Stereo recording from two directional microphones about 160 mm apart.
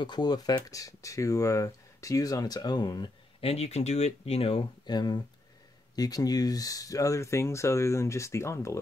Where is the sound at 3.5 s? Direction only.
40° left (ahead or behind).